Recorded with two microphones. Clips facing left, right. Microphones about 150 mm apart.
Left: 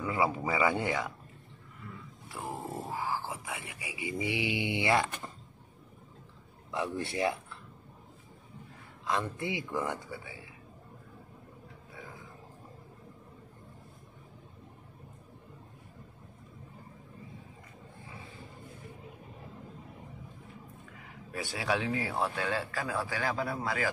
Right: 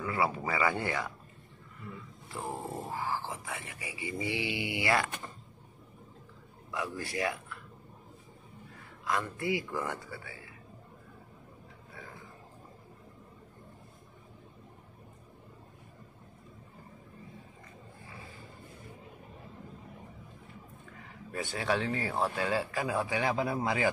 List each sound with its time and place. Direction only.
0.0 s speech: 15° left (ahead or behind)
2.2 s a sound: 10° left (ahead or behind)
2.9 s dog: 15° left (ahead or behind)
3.3 s speech: 15° left (ahead or behind)
6.7 s speech: 25° left (ahead or behind)
9.0 s a man's voice: 20° left (ahead or behind)
21.3 s speech: centre (ahead or behind); by 23.9 s 20° right (ahead or behind)